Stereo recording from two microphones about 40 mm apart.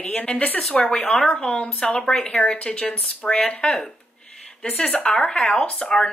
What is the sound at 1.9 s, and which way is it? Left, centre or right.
Speech, centre.